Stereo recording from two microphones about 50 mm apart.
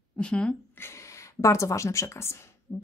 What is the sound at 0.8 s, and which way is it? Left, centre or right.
Speech, left.